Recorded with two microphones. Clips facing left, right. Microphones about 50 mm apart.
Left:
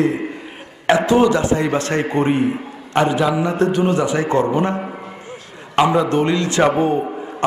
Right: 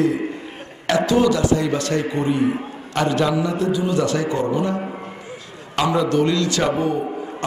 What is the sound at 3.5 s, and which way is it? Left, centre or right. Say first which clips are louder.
Speech: left 4 dB; left.